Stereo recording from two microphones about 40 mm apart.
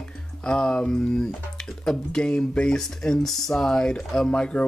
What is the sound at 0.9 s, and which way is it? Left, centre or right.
Speech, centre.